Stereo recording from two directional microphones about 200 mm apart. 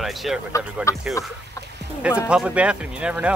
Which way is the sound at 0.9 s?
15° left (ahead or behind).